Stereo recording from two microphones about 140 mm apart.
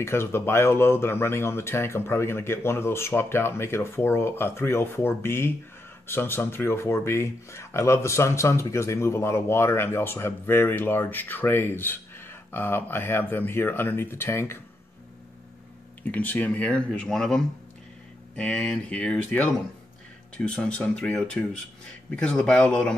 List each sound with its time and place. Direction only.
0.0 s speech: 15° left (ahead or behind)
16.0 s speech: 10° left (ahead or behind)